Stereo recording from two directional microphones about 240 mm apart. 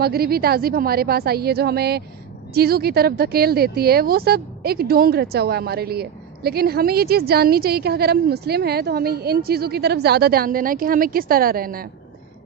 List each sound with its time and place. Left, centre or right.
0.0 s a woman's voice: right